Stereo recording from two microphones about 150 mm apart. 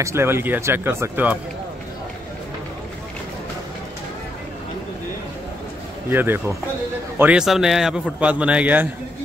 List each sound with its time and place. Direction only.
0.0 s speech: 15° right (ahead or behind)
6.0 s speech: 15° right (ahead or behind)